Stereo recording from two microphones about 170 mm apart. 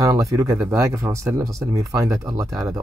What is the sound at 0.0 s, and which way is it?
Speech, 20° right (ahead or behind).